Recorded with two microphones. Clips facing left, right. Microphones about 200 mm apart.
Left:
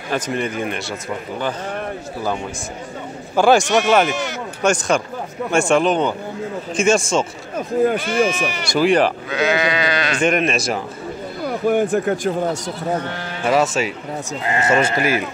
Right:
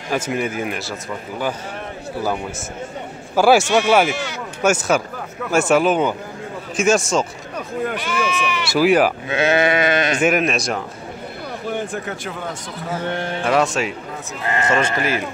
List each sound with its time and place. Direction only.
0.1 s speech: 5° right (ahead or behind)
3.3 s a man's voice: 5° right (ahead or behind)
7.5 s speech: 40° left (ahead or behind)
8.6 s speech: 5° right (ahead or behind)
9.3 s sheep: 25° right (ahead or behind)
10.1 s speech: 5° right (ahead or behind)
11.4 s speech: 55° left (ahead or behind)
13.1 s speech: 25° right (ahead or behind)
13.5 s speech: centre (ahead or behind)
14.4 s speech: 20° left (ahead or behind)